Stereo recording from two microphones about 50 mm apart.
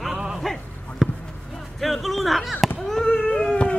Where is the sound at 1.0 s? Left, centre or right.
Centre.